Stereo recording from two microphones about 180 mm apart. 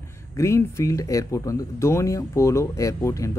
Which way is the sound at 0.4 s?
15° left (ahead or behind).